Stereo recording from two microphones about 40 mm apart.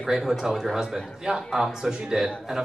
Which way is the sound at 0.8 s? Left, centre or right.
Centre.